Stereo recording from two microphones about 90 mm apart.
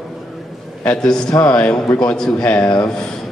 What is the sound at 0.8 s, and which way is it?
A man's voice, 10° left (ahead or behind).